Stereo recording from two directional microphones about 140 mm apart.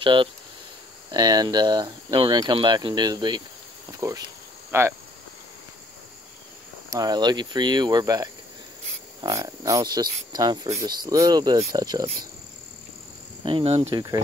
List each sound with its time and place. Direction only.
0.0 s speech: 35° right (ahead or behind); by 4.9 s 15° right (ahead or behind)
6.9 s speech: 25° right (ahead or behind)
13.4 s speech: 40° right (ahead or behind)